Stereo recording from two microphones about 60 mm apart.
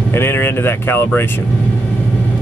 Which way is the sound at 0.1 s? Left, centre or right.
Left.